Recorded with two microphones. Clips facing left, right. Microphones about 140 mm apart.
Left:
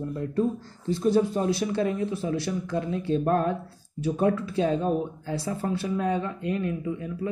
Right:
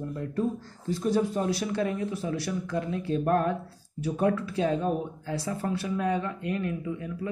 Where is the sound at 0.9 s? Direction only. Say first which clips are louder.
Left 3 dB; 25° left (ahead or behind).